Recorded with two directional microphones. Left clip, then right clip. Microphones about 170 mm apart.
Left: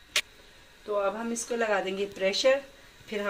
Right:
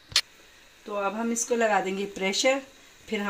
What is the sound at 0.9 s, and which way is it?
Speech, 65° right (ahead or behind).